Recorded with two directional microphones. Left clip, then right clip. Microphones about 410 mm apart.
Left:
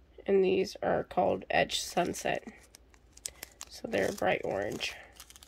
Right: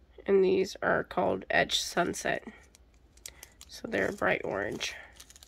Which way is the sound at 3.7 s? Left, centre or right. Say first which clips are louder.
Even; centre.